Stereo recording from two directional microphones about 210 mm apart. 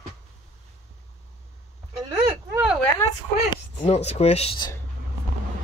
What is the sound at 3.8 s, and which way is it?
Speech, 30° left (ahead or behind).